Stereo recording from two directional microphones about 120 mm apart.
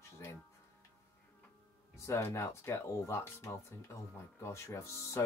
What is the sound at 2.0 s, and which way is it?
Speech, 25° left (ahead or behind).